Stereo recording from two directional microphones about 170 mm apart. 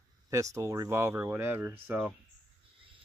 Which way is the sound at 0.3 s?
20° right (ahead or behind).